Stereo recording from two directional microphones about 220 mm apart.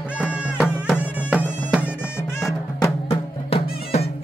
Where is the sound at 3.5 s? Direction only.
30° left (ahead or behind).